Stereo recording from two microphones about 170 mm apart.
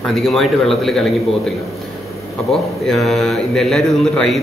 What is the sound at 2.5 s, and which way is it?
A man's voice, centre (ahead or behind).